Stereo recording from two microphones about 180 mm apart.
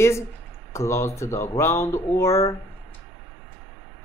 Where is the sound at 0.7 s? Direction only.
15° left (ahead or behind).